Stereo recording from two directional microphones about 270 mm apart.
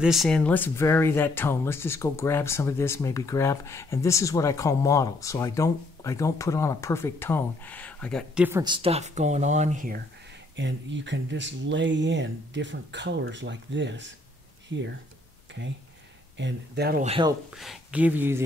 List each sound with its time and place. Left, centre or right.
0.0 s speech: centre
8.5 s speech: centre; by 10.0 s right
10.5 s speech: right
16.3 s speech: right
17.0 s speech: centre
17.5 s speech: centre